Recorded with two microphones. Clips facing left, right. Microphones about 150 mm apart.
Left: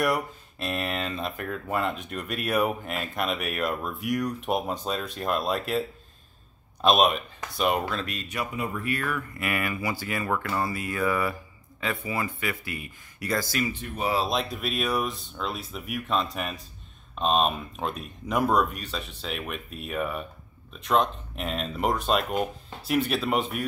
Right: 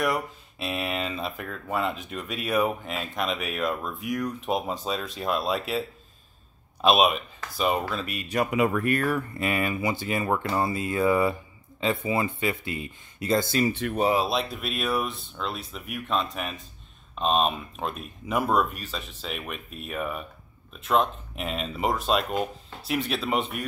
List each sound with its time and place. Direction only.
0.0 s speech: centre (ahead or behind)
8.5 s speech: 85° right
8.8 s speech: 45° right (ahead or behind); by 13.7 s 25° right (ahead or behind)
13.7 s speech: 75° right (ahead or behind)
14.1 s speech: 5° right (ahead or behind)